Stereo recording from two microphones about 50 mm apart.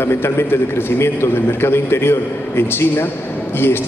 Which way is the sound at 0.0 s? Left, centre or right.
Left.